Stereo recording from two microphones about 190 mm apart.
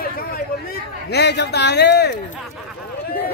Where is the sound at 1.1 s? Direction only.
60° left (ahead or behind).